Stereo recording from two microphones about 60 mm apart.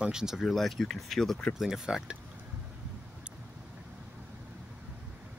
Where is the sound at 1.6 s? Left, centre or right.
Centre.